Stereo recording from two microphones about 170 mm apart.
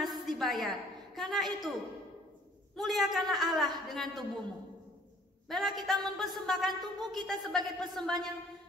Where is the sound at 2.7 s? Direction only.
Centre (ahead or behind).